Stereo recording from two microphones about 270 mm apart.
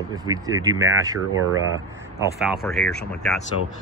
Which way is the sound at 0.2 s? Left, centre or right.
Centre.